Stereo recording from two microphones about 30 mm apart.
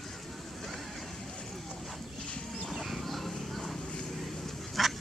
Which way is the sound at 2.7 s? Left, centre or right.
Centre.